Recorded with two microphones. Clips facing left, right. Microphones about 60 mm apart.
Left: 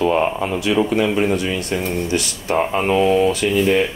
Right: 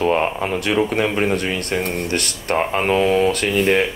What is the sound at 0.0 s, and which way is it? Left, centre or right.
Speech, right.